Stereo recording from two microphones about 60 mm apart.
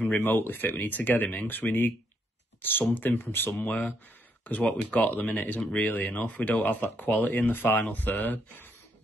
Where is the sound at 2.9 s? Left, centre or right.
Left.